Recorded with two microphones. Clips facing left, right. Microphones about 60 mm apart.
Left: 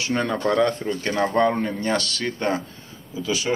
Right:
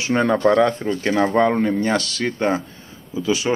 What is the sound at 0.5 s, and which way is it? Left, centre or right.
Speech, centre.